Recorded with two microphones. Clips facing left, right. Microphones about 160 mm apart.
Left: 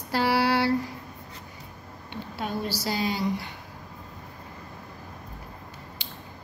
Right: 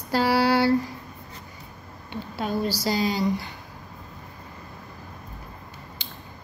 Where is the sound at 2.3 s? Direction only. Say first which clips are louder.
Right 4 dB; 35° right (ahead or behind).